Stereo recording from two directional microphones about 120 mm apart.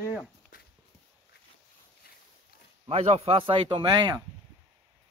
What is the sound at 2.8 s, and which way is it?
Speech, 60° right (ahead or behind).